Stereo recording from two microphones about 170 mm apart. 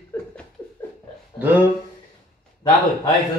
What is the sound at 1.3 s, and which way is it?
Speech, 10° right (ahead or behind).